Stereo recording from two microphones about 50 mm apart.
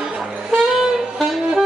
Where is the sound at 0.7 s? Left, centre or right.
Centre.